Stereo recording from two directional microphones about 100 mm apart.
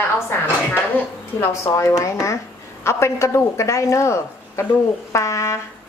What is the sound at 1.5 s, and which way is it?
A woman's voice, 30° left (ahead or behind).